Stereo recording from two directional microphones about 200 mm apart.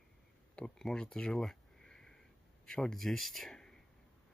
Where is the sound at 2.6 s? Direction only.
5° left (ahead or behind).